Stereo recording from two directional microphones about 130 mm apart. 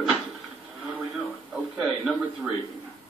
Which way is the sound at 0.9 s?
Centre (ahead or behind).